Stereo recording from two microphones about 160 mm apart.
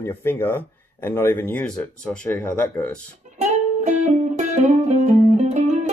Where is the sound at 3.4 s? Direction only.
50° right (ahead or behind).